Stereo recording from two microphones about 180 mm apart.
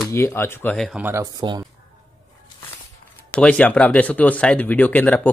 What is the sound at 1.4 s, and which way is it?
Speech, 25° right (ahead or behind).